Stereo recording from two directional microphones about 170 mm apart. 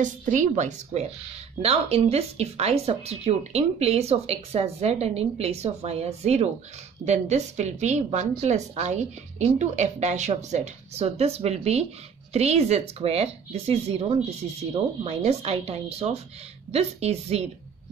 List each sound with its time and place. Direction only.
0.0 s a woman's voice: 50° right (ahead or behind)